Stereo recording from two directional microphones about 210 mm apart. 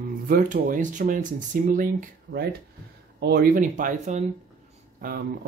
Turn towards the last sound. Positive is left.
turn(degrees=-45)  # may be behind; listen again after turning